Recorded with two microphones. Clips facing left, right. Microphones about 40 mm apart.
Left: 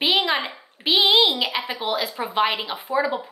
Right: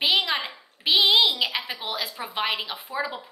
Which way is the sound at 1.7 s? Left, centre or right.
Centre.